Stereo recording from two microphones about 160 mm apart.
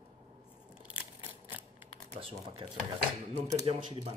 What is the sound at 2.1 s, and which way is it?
Speech, 35° right (ahead or behind).